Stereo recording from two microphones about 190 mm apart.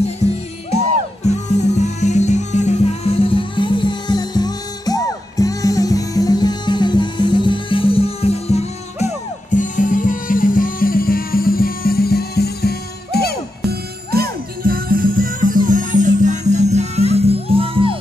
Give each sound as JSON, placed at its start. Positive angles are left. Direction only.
{"t": 1.2, "sound": "music", "side_deg": 35}
{"t": 13.7, "sound": "music", "side_deg": -55}